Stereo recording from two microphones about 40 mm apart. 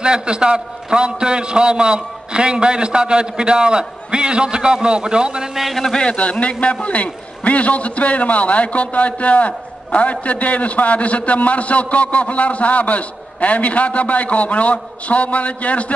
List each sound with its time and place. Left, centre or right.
0.0 s a man's voice: right
5.9 s a man's voice: left